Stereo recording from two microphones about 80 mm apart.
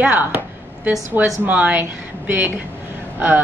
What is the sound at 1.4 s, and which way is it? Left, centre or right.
A woman's voice, right.